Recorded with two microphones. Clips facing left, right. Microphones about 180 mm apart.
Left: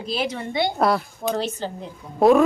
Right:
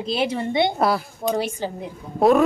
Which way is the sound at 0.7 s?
Centre (ahead or behind).